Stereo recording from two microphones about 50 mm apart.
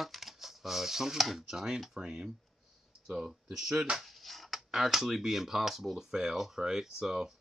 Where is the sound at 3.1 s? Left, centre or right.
Centre.